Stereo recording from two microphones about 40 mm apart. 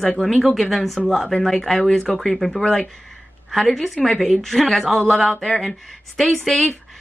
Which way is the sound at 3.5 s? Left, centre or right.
Centre.